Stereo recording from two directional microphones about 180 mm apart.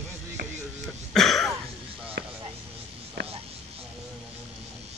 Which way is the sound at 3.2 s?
65° right (ahead or behind).